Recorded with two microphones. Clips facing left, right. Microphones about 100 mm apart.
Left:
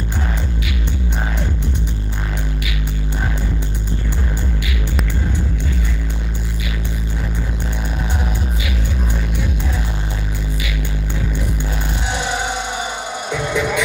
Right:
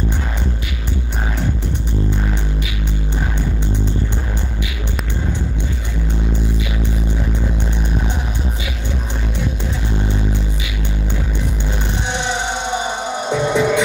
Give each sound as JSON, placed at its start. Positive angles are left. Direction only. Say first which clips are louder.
{"t": 13.3, "sound": "music", "louder": "right 4 dB", "side_deg": -25}